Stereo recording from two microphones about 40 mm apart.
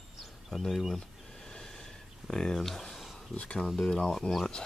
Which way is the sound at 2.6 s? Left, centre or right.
Centre.